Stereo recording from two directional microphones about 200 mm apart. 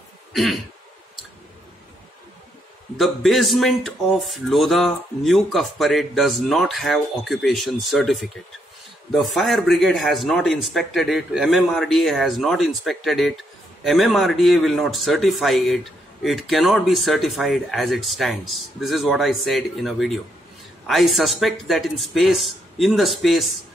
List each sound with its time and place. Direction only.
0.3 s throat clearing: centre (ahead or behind)
3.0 s speech: centre (ahead or behind)